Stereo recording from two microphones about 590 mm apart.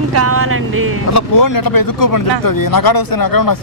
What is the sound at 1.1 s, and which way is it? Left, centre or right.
Speech, left.